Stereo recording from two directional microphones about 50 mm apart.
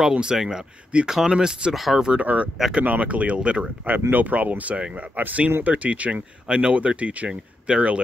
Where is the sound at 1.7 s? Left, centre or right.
Centre.